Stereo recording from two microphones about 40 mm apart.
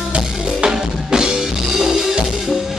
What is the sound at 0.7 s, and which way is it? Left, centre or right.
Drum, centre.